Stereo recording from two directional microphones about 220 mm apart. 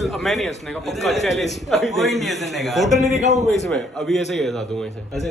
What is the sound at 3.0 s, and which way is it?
Speech, 30° left (ahead or behind).